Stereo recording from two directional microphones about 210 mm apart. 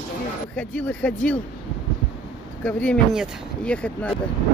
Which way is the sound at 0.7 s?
5° left (ahead or behind).